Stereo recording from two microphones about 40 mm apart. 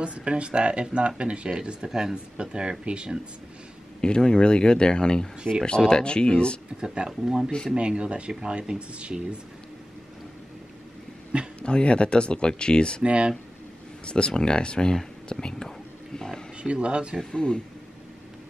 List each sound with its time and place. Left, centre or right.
0.0 s speech: right
4.0 s speech: left
6.8 s speech: centre
11.6 s speech: left
13.0 s speech: right
14.0 s speech: left
16.6 s speech: right
17.2 s speech: centre